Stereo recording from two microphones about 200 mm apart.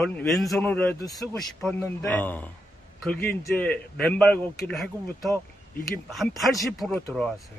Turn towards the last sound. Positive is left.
turn(degrees=0)  # may be behind; listen again after turning